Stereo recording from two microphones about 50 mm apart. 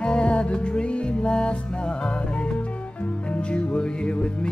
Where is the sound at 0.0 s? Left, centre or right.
Centre.